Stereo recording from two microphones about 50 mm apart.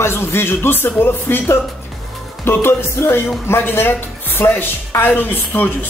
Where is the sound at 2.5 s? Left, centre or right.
Left.